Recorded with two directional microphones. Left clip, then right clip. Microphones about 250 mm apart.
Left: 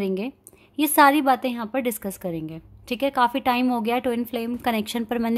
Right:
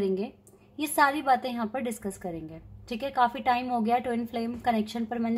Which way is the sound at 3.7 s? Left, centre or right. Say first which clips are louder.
Left 3 dB; left.